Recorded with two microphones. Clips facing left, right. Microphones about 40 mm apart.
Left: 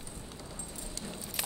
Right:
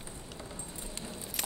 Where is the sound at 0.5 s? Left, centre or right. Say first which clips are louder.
Even; right.